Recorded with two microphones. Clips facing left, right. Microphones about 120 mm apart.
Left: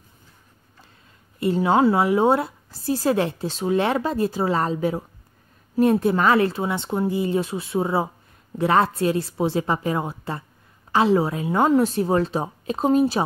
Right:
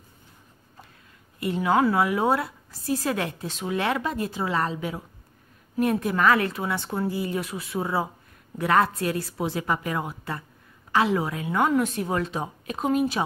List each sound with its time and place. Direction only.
1.4 s a woman's voice: 30° left (ahead or behind)